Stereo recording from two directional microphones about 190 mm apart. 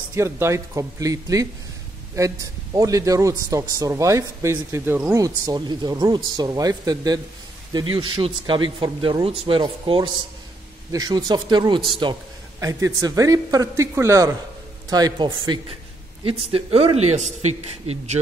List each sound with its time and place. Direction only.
0.1 s a man's voice: 15° right (ahead or behind); by 18.2 s 35° right (ahead or behind)